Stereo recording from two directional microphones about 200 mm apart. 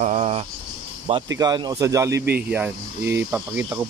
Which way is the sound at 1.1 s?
30° right (ahead or behind).